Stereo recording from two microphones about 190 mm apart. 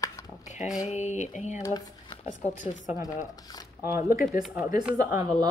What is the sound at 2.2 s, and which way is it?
Speech, 40° left (ahead or behind).